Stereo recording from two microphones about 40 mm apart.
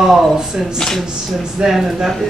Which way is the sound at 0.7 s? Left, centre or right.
Centre.